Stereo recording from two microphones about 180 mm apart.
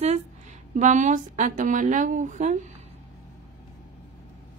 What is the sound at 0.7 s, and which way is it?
A woman's voice, 45° right (ahead or behind).